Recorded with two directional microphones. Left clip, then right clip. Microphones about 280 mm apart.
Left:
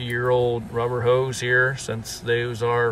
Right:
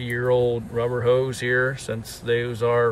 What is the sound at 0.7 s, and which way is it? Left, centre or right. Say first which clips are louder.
Speech: even; centre.